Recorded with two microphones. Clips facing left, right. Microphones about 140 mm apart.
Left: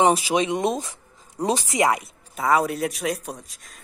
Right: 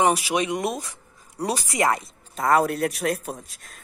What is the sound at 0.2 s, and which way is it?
Speech, 30° left (ahead or behind).